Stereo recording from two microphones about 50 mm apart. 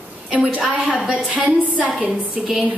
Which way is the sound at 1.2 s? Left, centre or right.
Right.